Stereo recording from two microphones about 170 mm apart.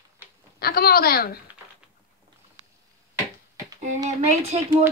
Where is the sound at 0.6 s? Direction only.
65° left (ahead or behind).